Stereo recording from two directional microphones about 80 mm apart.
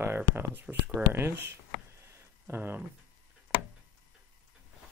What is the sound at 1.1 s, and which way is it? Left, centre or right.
Speech, right.